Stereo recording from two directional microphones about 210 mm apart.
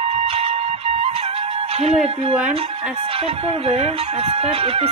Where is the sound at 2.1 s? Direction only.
25° right (ahead or behind).